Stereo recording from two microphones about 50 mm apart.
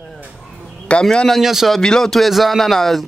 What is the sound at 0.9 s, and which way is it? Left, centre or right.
Speech, left.